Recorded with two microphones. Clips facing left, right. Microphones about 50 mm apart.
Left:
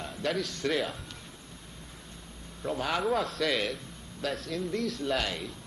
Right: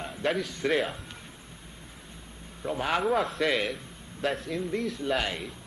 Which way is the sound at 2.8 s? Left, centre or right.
Right.